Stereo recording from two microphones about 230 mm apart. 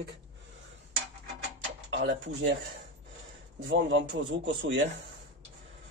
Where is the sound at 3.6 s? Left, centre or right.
Right.